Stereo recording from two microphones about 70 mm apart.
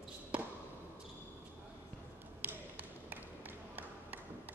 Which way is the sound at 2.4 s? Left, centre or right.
Right.